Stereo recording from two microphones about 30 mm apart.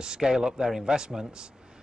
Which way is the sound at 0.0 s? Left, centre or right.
Right.